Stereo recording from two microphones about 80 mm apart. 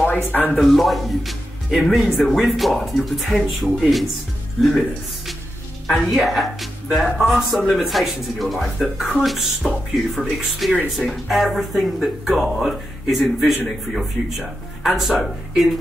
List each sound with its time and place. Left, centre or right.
0.0 s speech: left
0.5 s speech: centre
5.9 s speech: centre